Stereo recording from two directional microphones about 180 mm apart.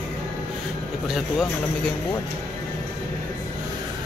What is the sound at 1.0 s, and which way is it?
Speech, centre (ahead or behind).